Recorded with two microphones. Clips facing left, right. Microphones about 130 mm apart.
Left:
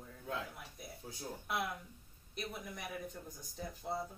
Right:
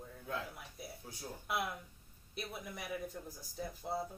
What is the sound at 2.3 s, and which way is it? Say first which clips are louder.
Speech: even; 5° right (ahead or behind).